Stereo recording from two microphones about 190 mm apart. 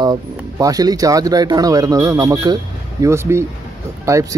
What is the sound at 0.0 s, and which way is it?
Speech, 20° right (ahead or behind).